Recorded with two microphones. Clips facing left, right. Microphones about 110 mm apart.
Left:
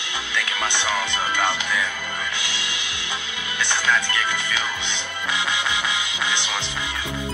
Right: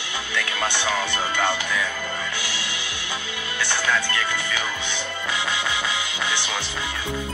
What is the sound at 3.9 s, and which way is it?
Speech, 20° left (ahead or behind).